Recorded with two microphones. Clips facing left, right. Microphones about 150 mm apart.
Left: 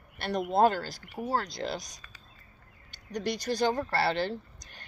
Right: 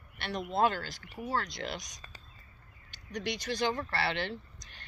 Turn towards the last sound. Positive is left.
turn(degrees=40)  # may be behind; listen again after turning